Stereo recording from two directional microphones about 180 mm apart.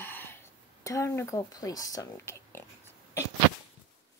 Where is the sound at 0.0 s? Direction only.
10° left (ahead or behind).